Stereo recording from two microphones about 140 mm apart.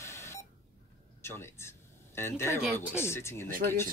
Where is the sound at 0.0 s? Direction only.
20° left (ahead or behind).